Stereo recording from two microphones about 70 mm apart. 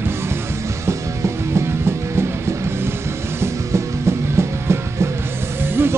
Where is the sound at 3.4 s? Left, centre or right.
Right.